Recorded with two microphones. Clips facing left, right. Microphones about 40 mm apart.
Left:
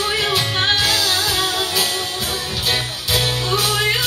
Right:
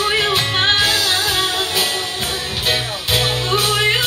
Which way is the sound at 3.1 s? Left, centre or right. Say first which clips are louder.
Right 2 dB; centre.